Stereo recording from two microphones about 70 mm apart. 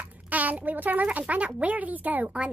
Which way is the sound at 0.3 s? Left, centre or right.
Right.